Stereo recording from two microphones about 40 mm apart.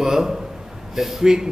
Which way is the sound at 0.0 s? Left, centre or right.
Centre.